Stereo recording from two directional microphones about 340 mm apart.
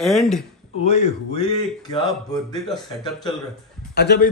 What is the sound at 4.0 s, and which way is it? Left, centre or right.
Speech, left.